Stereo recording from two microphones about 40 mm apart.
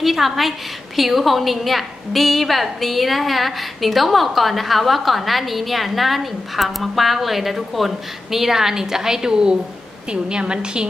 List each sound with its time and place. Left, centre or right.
0.0 s a woman's voice: centre; by 10.9 s right